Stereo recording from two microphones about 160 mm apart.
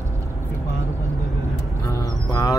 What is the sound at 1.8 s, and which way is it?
Music, 20° left (ahead or behind).